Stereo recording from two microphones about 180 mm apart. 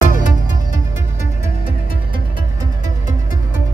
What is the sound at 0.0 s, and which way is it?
Music, 45° left (ahead or behind).